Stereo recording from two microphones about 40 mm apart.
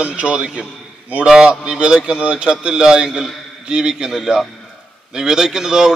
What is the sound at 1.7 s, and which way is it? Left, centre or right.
A man's voice, right.